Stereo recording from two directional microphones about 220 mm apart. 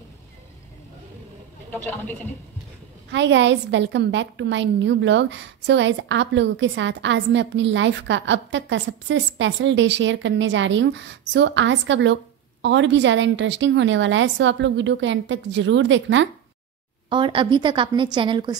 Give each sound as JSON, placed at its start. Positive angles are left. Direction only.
{"t": 3.1, "sound": "a woman's voice", "side_deg": -55}
{"t": 17.1, "sound": "a woman's voice", "side_deg": -20}